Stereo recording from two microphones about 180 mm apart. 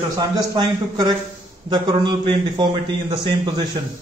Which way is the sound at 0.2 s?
20° right (ahead or behind).